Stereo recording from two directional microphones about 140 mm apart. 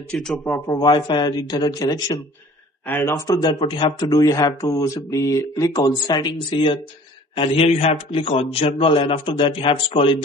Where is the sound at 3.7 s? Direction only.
30° left (ahead or behind).